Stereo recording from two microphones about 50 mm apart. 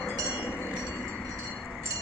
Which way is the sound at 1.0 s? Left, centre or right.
Centre.